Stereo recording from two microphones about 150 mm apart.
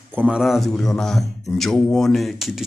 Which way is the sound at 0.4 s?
Centre (ahead or behind).